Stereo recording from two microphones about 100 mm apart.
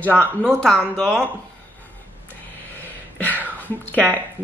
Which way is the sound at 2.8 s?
15° left (ahead or behind).